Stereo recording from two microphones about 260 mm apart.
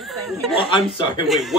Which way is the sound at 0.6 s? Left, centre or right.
Centre.